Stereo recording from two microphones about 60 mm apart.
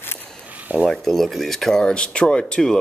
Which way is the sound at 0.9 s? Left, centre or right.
Centre.